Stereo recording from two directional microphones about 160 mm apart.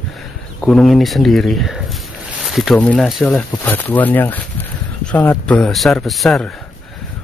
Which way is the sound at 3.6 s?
10° left (ahead or behind).